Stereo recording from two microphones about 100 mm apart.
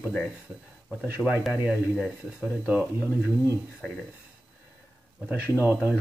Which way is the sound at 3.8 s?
10° left (ahead or behind).